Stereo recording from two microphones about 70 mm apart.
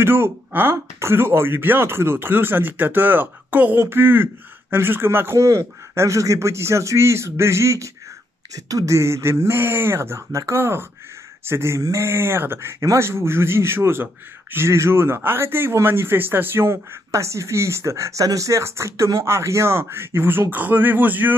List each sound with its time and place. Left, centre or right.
0.0 s speech: right
8.5 s speech: right
17.1 s speech: right